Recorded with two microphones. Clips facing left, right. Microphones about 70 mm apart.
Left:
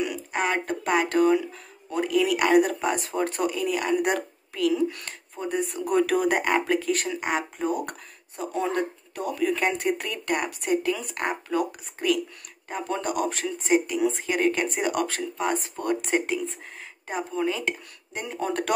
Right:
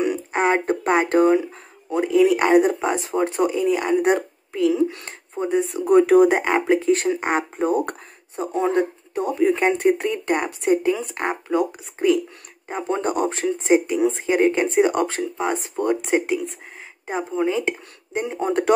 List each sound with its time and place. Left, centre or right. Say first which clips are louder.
0.0 s speech: right 6 dB; right